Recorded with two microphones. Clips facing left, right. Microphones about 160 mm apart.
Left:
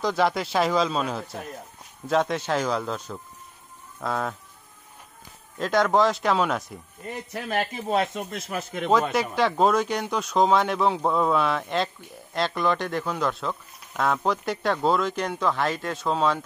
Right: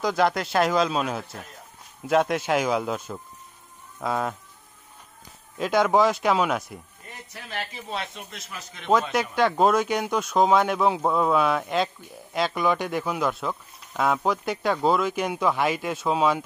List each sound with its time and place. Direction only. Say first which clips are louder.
0.0 s speech: right 1 dB; centre (ahead or behind)
4.0 s speech: right 1 dB; 5° right (ahead or behind)
5.6 s speech: right 1 dB; 5° right (ahead or behind)
7.3 s speech: left 7 dB; 50° left (ahead or behind)
9.1 s speech: right 1 dB; centre (ahead or behind)